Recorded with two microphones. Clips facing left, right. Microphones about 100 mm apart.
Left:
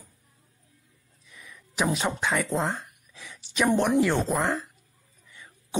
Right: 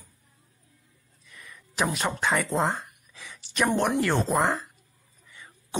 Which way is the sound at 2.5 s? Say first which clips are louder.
Right 2 dB; 5° right (ahead or behind).